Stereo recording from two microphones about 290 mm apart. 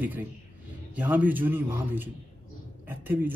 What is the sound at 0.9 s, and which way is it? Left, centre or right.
Speech, centre.